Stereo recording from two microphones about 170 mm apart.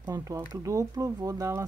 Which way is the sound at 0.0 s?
20° right (ahead or behind).